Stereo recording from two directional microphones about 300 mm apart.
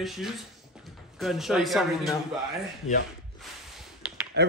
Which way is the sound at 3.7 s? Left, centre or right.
Centre.